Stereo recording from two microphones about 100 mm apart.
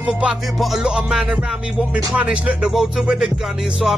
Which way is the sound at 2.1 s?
10° right (ahead or behind).